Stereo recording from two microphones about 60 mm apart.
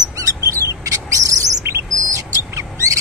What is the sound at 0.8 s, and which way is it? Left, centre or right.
Bird, right.